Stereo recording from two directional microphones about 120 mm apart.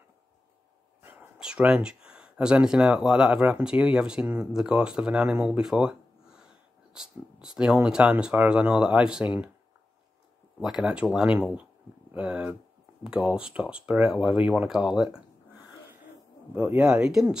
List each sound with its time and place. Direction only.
1.0 s speech: 10° right (ahead or behind)
10.6 s speech: 5° right (ahead or behind)
16.5 s speech: 20° right (ahead or behind)
16.8 s speech: 5° right (ahead or behind)